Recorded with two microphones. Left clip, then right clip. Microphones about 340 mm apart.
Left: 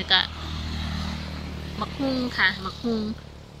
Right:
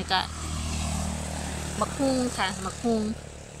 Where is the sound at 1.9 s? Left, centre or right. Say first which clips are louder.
Even; right.